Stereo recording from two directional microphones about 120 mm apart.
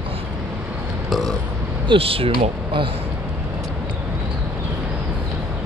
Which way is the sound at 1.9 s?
50° right (ahead or behind).